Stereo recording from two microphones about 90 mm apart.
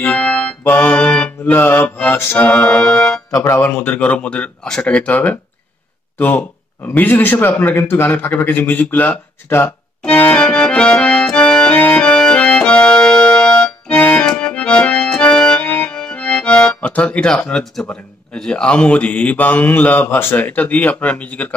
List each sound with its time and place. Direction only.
0.0 s music: 10° left (ahead or behind)
1.5 s a man's voice: 20° left (ahead or behind)
10.0 s accordion: 15° left (ahead or behind)
18.3 s speech: 10° left (ahead or behind)